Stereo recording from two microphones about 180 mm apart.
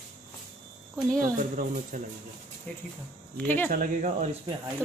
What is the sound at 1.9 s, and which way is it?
Speech, 45° right (ahead or behind).